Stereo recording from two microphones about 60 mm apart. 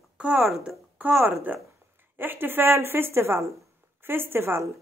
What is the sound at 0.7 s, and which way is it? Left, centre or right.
A woman's voice, right.